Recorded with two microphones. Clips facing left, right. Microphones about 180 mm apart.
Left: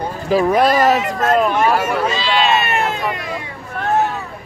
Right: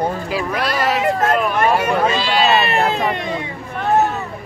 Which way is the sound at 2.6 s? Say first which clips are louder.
Right 2 dB; 35° right (ahead or behind).